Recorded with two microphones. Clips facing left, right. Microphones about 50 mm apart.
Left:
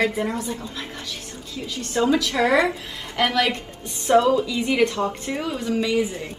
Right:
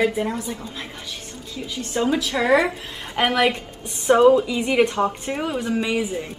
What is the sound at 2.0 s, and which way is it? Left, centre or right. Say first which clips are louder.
Speech: left 1 dB; centre.